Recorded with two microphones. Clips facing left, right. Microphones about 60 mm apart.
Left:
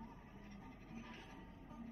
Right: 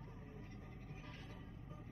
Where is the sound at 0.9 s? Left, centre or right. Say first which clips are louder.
Left 1 dB; centre.